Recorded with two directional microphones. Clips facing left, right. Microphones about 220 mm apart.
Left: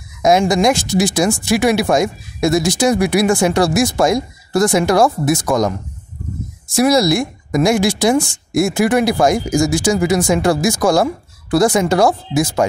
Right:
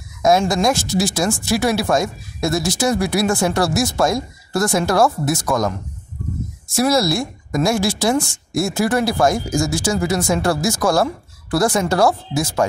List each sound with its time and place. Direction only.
0.2 s speech: 15° left (ahead or behind)
6.7 s speech: 15° left (ahead or behind)